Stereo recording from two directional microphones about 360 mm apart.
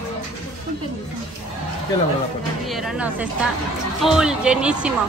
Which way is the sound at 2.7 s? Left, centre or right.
Centre.